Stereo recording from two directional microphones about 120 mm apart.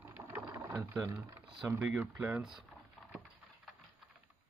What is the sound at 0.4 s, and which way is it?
Sewing machine, 25° right (ahead or behind).